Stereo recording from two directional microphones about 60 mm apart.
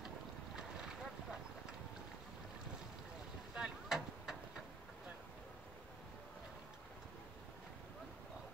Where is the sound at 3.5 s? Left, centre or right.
Centre.